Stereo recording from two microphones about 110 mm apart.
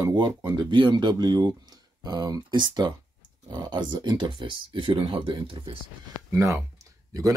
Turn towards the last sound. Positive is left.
turn(degrees=-30)  # may be behind; listen again after turning